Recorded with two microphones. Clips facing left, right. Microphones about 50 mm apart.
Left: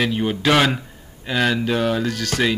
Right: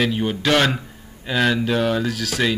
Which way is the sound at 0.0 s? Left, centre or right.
Centre.